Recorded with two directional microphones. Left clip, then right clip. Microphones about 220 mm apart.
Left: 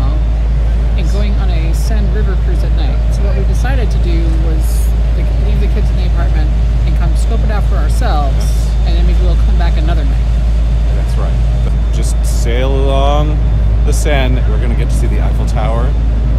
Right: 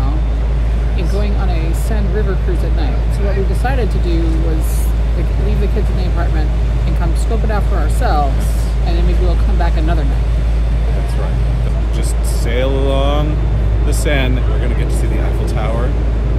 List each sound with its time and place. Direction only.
7.5 s speech: 5° right (ahead or behind)
12.4 s mantra: 20° left (ahead or behind)